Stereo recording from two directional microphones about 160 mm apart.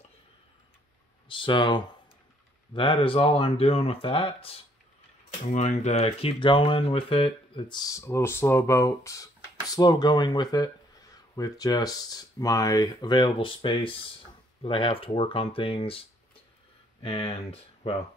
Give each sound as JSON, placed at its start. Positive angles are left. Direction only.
{"t": 1.3, "sound": "speech", "side_deg": 30}
{"t": 5.5, "sound": "speech", "side_deg": 45}